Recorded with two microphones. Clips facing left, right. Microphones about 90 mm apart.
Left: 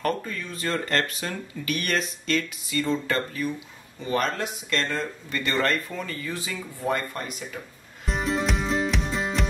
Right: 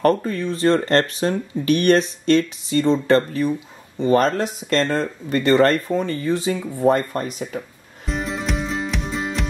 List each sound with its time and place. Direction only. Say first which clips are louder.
0.0 s speech: right 9 dB; 35° right (ahead or behind)
8.1 s music: right 1 dB; centre (ahead or behind)